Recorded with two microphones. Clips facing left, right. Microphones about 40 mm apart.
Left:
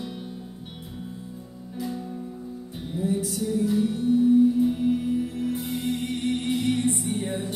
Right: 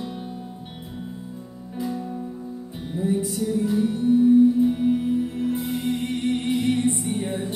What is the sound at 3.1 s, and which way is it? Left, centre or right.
Music, centre.